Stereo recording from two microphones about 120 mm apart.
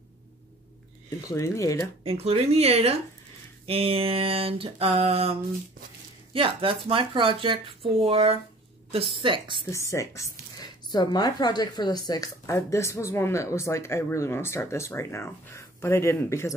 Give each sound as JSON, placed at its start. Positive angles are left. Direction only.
{"t": 1.3, "sound": "speech", "side_deg": 25}
{"t": 2.0, "sound": "speech", "side_deg": -55}
{"t": 9.7, "sound": "speech", "side_deg": 25}